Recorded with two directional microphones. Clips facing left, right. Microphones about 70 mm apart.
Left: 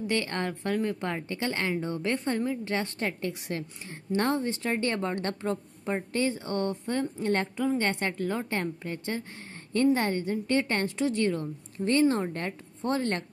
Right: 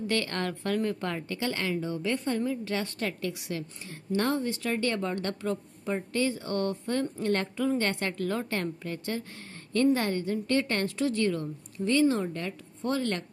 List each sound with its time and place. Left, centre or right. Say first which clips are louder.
0.0 s a woman's voice: even; left